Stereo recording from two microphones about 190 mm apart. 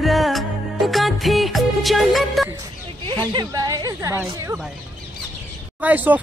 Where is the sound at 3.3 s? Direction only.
20° right (ahead or behind).